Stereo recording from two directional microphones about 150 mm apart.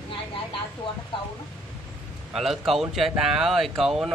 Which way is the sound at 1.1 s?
35° left (ahead or behind).